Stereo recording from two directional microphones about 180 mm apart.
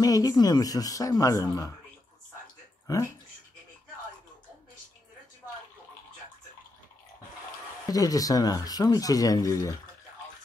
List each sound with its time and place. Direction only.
0.0 s speech: 20° left (ahead or behind)
2.9 s speech: 20° left (ahead or behind)
7.9 s speech: 20° left (ahead or behind)